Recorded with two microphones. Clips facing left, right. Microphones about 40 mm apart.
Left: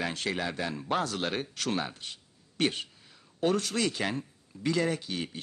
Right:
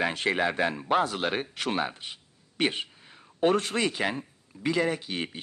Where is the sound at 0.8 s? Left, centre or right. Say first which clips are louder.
Right 2 dB; centre.